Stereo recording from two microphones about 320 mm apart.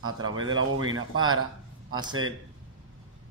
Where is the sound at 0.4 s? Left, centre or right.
Right.